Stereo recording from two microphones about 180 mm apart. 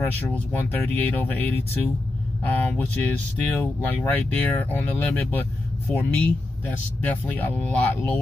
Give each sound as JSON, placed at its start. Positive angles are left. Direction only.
{"t": 0.3, "sound": "speech", "side_deg": 10}